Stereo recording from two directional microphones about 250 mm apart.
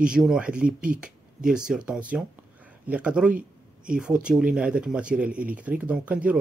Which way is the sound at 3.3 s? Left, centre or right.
Right.